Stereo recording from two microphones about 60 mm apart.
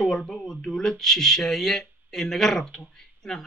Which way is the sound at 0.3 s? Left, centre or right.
Centre.